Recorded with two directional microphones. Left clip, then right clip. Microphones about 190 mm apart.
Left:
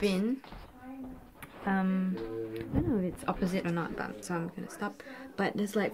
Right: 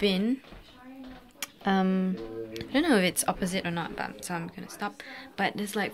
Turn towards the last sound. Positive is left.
turn(degrees=5)  # may be behind; listen again after turning